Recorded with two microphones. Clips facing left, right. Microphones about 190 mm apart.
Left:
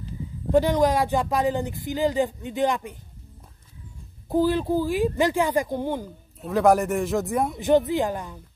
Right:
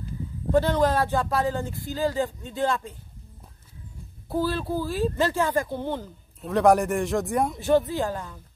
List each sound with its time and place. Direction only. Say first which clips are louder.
0.5 s speech: left 2 dB; 15° left (ahead or behind)
4.3 s speech: left 5 dB; 15° left (ahead or behind)
6.4 s speech: even; centre (ahead or behind)
7.5 s speech: left 4 dB; 20° left (ahead or behind)